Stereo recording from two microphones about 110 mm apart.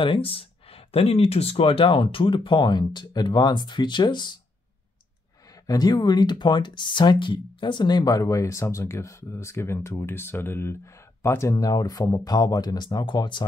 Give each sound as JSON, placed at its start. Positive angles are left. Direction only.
{"t": 0.0, "sound": "speech", "side_deg": 55}
{"t": 5.5, "sound": "speech", "side_deg": 35}
{"t": 11.5, "sound": "speech", "side_deg": 35}